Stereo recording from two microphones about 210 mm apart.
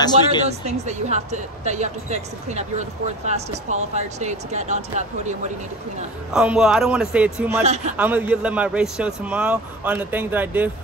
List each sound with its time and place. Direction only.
0.5 s speech: 30° right (ahead or behind)
6.3 s speech: 5° right (ahead or behind)
7.6 s speech: 30° right (ahead or behind)
8.0 s a man's voice: 10° right (ahead or behind)